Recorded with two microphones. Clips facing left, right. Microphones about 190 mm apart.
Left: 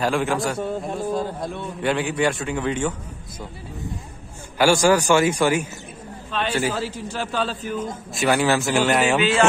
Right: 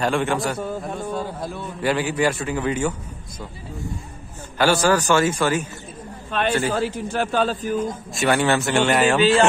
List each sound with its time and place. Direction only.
0.0 s a man's voice: centre (ahead or behind)
4.6 s a man's voice: 10° left (ahead or behind)
6.3 s a man's voice: 55° right (ahead or behind)
8.1 s a man's voice: centre (ahead or behind)